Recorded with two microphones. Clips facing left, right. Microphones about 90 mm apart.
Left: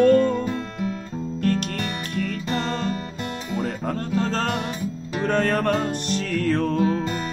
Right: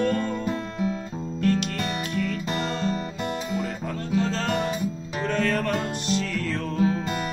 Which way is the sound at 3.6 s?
45° left (ahead or behind).